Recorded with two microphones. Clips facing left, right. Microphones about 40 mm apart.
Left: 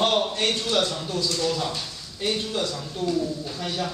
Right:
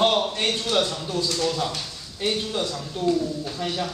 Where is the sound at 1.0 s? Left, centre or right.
Right.